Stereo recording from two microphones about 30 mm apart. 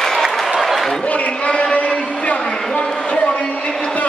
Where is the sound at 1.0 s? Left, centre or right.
Left.